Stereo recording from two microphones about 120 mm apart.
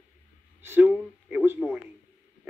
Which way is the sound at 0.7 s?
15° right (ahead or behind).